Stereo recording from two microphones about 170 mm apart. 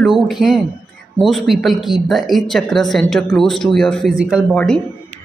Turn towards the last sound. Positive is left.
turn(degrees=-5)  # may be behind; listen again after turning